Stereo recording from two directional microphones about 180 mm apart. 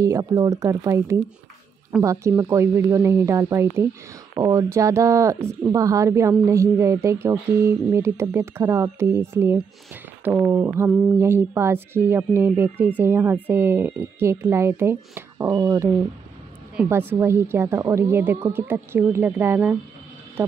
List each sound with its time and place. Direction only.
0.0 s speech: 20° right (ahead or behind)